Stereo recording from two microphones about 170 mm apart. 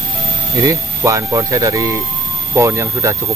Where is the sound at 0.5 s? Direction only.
20° right (ahead or behind).